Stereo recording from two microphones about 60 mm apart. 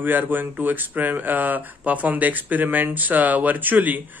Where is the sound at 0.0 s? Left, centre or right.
Right.